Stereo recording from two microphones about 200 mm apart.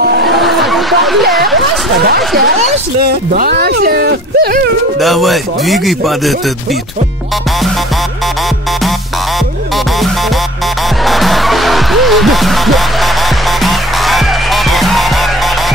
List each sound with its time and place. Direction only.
0.3 s a sound: centre (ahead or behind)
3.0 s speech: 50° right (ahead or behind)
5.0 s speech: centre (ahead or behind)
11.1 s music: centre (ahead or behind)